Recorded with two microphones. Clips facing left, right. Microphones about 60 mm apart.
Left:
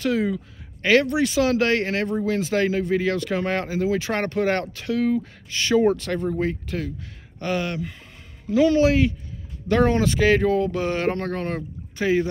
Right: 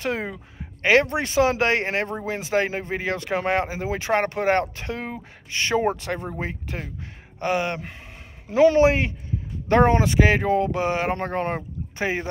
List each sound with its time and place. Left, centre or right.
0.0 s speech: right